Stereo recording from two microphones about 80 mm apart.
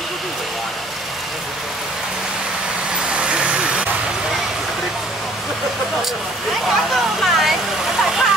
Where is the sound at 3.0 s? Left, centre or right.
Centre.